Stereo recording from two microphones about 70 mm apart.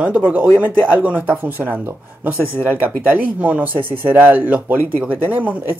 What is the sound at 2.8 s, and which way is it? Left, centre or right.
Speech, right.